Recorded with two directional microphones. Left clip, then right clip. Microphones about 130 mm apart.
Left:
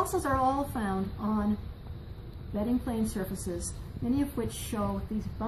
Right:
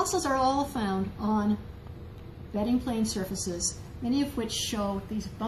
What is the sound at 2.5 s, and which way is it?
A woman's voice, centre (ahead or behind).